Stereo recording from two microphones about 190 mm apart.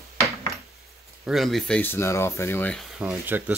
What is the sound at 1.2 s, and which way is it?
Speech, centre (ahead or behind).